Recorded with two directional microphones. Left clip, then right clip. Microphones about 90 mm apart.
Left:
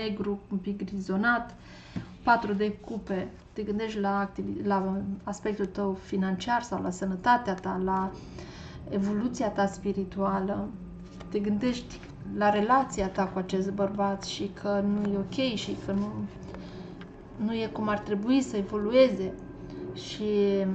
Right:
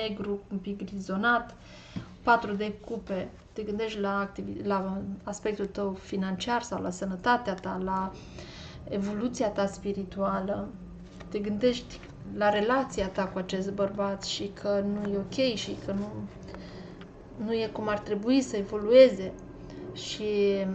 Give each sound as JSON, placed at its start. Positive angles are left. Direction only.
{"t": 0.0, "sound": "a woman's voice", "side_deg": -20}
{"t": 17.5, "sound": "a woman's voice", "side_deg": -30}